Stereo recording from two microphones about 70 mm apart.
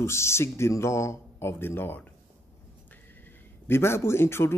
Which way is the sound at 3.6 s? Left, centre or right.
Left.